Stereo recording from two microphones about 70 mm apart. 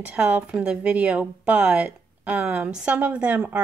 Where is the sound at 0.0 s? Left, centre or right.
Right.